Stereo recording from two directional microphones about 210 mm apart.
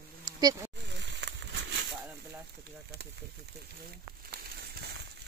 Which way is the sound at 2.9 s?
50° right (ahead or behind).